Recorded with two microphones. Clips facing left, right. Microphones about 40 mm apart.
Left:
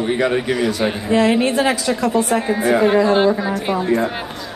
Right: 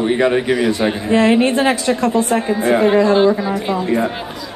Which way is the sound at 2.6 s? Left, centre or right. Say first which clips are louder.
Right 1 dB; right.